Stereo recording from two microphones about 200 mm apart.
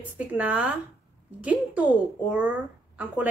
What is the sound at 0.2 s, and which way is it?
Speech, 5° right (ahead or behind).